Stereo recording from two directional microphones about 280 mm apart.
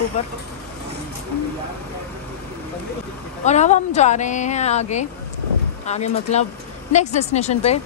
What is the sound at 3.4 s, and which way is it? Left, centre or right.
Speech, left.